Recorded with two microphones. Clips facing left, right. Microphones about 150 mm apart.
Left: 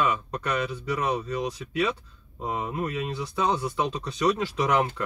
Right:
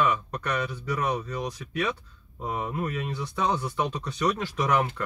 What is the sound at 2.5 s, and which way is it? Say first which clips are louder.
Speech: left 1 dB; 15° left (ahead or behind).